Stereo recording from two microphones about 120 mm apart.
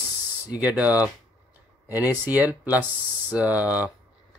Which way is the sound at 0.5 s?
15° right (ahead or behind).